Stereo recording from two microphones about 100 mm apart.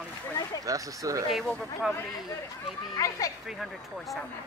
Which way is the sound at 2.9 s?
35° left (ahead or behind).